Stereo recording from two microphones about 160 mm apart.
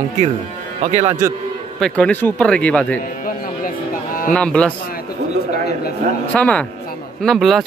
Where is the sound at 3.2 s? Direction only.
60° left (ahead or behind).